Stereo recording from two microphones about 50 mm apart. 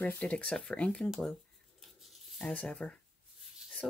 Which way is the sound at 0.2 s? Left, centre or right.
Left.